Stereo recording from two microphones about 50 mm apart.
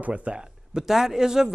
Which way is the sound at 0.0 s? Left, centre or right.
Right.